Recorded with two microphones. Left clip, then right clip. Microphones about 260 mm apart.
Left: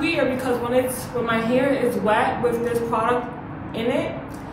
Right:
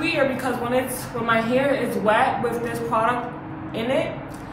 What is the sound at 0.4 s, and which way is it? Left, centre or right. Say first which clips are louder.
A woman's voice: left 2 dB; centre.